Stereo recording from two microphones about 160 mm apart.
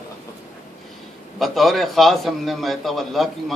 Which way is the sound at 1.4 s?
Centre (ahead or behind).